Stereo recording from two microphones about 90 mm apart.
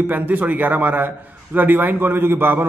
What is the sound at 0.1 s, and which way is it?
A man's voice, 20° right (ahead or behind).